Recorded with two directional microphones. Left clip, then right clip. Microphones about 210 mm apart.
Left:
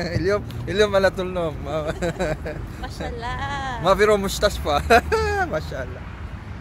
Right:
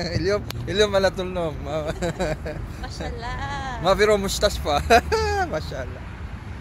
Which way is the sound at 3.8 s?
Centre (ahead or behind).